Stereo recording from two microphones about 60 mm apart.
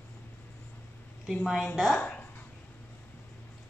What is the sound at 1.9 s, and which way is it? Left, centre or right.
Speech, left.